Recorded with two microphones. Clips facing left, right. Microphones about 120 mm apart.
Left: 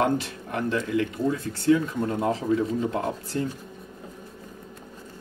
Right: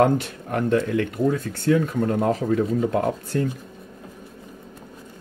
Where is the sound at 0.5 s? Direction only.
55° right (ahead or behind).